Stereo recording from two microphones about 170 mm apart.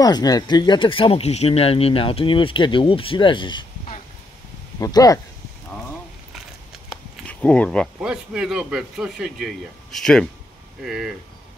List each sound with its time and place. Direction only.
0.0 s speech: 20° left (ahead or behind)
4.7 s speech: 20° left (ahead or behind)
7.2 s a man's voice: 5° left (ahead or behind)